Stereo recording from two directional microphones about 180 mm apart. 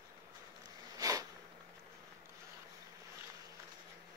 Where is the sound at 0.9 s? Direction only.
20° right (ahead or behind).